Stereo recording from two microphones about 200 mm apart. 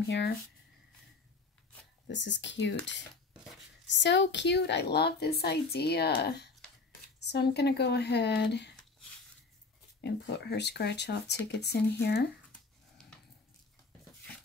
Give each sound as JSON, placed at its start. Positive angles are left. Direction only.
{"t": 2.0, "sound": "a woman's voice", "side_deg": 60}
{"t": 3.8, "sound": "a woman's voice", "side_deg": 60}
{"t": 10.0, "sound": "a woman's voice", "side_deg": 55}